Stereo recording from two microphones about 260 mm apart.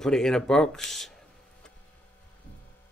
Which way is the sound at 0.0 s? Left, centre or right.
Centre.